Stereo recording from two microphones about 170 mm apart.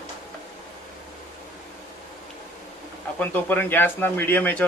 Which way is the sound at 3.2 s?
10° left (ahead or behind).